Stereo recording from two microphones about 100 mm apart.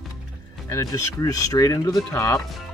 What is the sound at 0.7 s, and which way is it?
Speech, 35° left (ahead or behind).